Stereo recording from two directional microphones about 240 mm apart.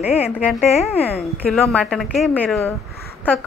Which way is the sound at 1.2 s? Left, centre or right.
Centre.